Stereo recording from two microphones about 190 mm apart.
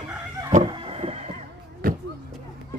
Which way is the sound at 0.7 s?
30° right (ahead or behind).